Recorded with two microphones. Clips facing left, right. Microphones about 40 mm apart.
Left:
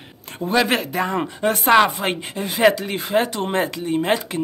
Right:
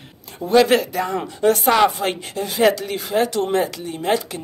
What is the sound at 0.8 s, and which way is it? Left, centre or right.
Speech, left.